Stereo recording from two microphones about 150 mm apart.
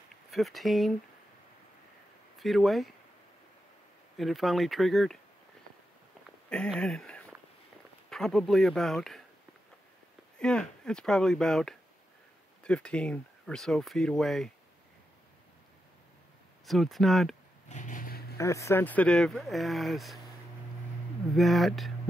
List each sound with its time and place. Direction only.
0.1 s speech: centre (ahead or behind)
2.3 s speech: centre (ahead or behind)
4.2 s speech: centre (ahead or behind)
6.5 s speech: 5° left (ahead or behind)
10.4 s speech: 5° left (ahead or behind)
16.6 s speech: centre (ahead or behind)
17.6 s a sound: 55° left (ahead or behind)
18.4 s speech: 20° left (ahead or behind); by 20.2 s centre (ahead or behind)
21.4 s speech: centre (ahead or behind)